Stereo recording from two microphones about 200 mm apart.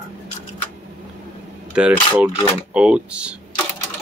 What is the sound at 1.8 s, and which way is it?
Speech, 5° right (ahead or behind).